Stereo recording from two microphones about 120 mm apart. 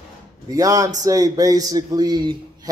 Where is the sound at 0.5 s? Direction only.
30° right (ahead or behind).